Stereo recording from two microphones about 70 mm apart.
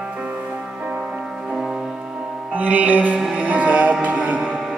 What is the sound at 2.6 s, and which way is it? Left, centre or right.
Music, right.